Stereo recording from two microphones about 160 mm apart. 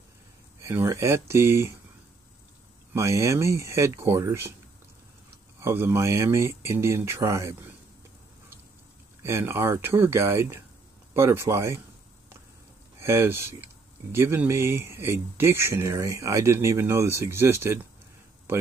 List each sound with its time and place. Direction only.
0.6 s speech: 20° right (ahead or behind)
2.9 s speech: 15° right (ahead or behind)
5.6 s speech: 15° right (ahead or behind)
9.2 s speech: 15° right (ahead or behind)
13.0 s speech: 15° right (ahead or behind)